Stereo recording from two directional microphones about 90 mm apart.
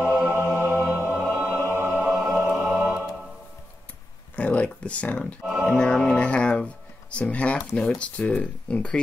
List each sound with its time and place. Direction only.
0.0 s music: 15° right (ahead or behind)
2.8 s music: 25° right (ahead or behind)
4.4 s a sound: 15° left (ahead or behind)
5.4 s speech: 10° right (ahead or behind)
5.7 s speech: 10° left (ahead or behind)